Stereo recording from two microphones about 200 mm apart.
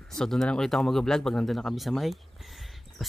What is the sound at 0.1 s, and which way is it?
Speech, centre (ahead or behind).